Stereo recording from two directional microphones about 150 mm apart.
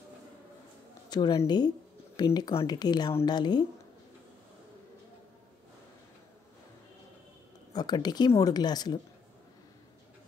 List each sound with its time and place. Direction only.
1.1 s speech: 25° left (ahead or behind)
7.7 s speech: 25° left (ahead or behind)